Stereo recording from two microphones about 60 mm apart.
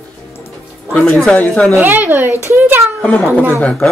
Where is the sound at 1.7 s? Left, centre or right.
Right.